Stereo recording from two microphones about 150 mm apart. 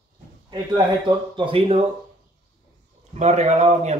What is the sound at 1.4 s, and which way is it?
Speech, 40° right (ahead or behind).